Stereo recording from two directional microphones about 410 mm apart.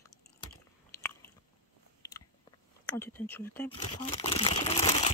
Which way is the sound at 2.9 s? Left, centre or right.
Centre.